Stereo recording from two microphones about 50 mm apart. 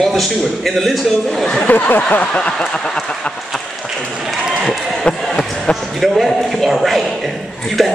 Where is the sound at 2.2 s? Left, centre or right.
Left.